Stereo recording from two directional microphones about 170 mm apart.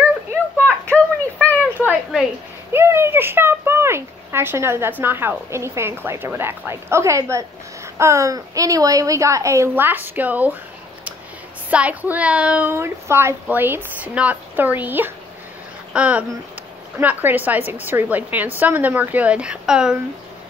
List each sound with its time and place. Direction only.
0.7 s a sound: 10° left (ahead or behind)
2.7 s a woman's voice: 15° right (ahead or behind)
11.7 s a woman's voice: 10° right (ahead or behind)